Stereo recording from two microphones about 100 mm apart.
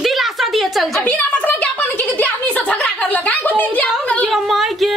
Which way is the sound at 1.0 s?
15° left (ahead or behind).